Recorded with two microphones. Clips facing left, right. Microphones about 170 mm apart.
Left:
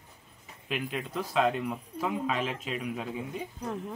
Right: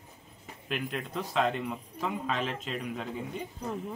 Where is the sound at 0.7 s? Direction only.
5° left (ahead or behind).